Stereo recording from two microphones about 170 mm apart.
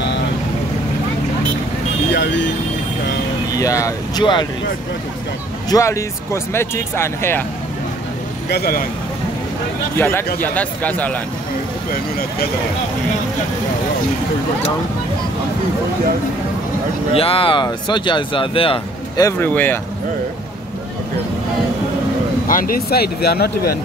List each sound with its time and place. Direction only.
2.0 s vehicle: 90° left
3.5 s speech: 20° left (ahead or behind)
5.7 s speech: 20° left (ahead or behind)
8.5 s speech: 65° left (ahead or behind)
9.9 s speech: 10° left (ahead or behind)
11.9 s speech: 65° left (ahead or behind)
17.1 s speech: 35° left (ahead or behind)
19.2 s speech: 10° left (ahead or behind)
22.5 s speech: 55° left (ahead or behind)